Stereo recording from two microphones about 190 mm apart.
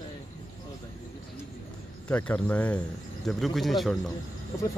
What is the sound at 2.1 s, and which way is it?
Speech, 10° left (ahead or behind).